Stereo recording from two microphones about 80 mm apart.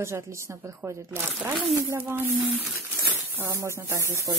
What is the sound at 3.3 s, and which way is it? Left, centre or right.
Speech, right.